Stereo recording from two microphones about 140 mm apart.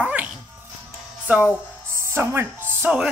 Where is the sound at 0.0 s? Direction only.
10° right (ahead or behind).